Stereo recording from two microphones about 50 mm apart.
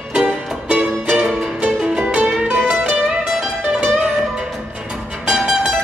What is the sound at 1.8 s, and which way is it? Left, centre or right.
Music, centre.